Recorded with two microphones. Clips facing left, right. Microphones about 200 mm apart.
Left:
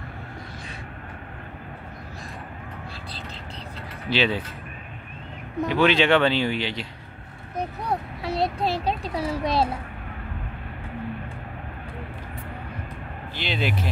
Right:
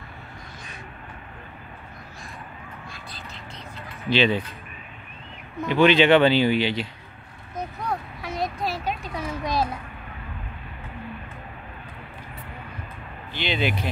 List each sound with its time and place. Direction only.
4.1 s speech: 5° left (ahead or behind)
5.7 s speech: centre (ahead or behind)
7.5 s a sound: 30° left (ahead or behind)
13.3 s speech: centre (ahead or behind)